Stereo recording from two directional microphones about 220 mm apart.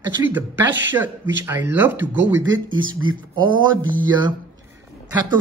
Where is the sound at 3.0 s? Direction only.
20° right (ahead or behind).